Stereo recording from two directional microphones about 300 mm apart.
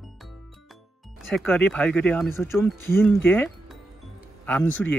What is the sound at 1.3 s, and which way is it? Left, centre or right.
Speech, centre.